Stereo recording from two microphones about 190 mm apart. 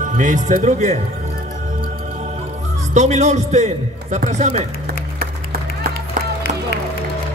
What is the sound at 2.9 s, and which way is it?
A man's voice, 40° right (ahead or behind).